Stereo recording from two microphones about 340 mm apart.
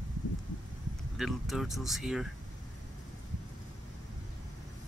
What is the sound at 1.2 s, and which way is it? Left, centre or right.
Speech, centre.